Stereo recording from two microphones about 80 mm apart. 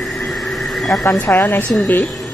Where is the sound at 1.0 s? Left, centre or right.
Left.